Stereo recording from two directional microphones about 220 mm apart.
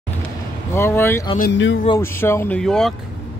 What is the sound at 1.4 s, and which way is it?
Speech, 55° left (ahead or behind).